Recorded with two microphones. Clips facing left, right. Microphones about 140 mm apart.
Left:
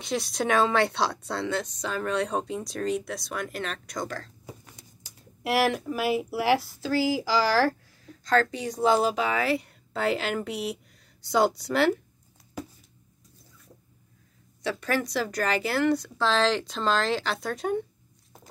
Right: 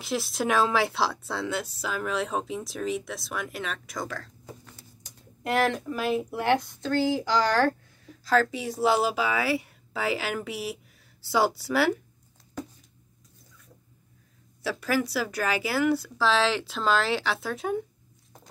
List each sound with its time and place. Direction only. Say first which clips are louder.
0.0 s speech: even; centre (ahead or behind)
4.5 s speech: even; 10° left (ahead or behind); by 11.9 s 5° right (ahead or behind)
14.6 s speech: right 1 dB; 5° right (ahead or behind)